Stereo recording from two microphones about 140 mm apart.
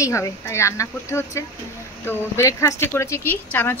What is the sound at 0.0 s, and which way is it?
Speech, 20° left (ahead or behind).